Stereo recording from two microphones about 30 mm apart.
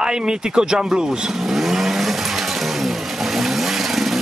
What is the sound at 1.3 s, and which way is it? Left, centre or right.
Vehicle, centre.